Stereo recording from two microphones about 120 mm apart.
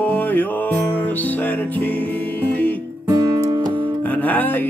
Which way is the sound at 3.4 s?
35° right (ahead or behind).